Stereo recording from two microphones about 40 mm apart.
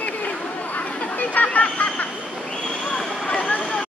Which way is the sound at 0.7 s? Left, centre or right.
Left.